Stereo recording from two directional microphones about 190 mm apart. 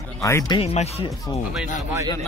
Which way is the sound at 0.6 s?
30° left (ahead or behind).